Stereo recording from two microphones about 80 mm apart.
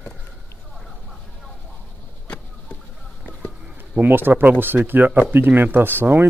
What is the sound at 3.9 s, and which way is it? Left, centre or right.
Speech, right.